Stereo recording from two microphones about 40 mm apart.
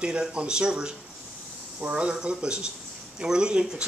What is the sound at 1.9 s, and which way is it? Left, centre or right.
A man's voice, right.